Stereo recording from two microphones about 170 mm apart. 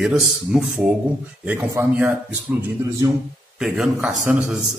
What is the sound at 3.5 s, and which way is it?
Speech, centre (ahead or behind).